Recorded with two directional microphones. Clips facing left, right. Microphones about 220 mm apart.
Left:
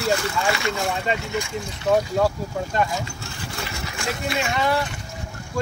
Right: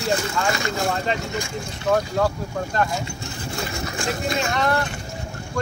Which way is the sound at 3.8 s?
40° right (ahead or behind).